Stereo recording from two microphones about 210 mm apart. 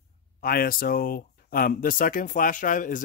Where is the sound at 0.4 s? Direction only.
45° left (ahead or behind).